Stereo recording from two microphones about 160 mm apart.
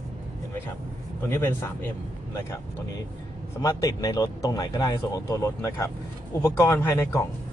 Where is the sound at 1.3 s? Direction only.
15° left (ahead or behind).